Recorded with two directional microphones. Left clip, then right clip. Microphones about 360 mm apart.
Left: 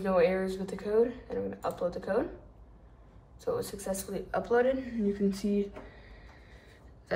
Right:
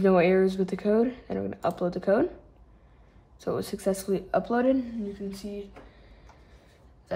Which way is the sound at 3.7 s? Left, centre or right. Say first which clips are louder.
Right 8 dB; centre.